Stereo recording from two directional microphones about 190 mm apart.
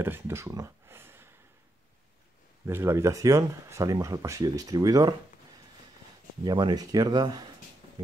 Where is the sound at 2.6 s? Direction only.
15° right (ahead or behind).